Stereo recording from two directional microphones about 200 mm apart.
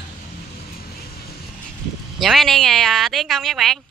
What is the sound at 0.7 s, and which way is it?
Vehicle, 50° left (ahead or behind).